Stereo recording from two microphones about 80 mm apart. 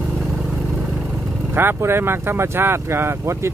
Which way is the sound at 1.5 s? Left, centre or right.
Right.